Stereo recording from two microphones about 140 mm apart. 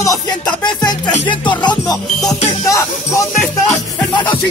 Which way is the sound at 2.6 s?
20° left (ahead or behind).